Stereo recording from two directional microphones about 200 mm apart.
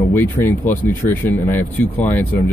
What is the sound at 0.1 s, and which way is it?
Speech, 10° left (ahead or behind).